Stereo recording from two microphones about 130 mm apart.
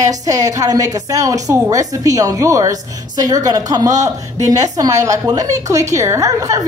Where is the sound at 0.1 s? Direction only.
25° right (ahead or behind).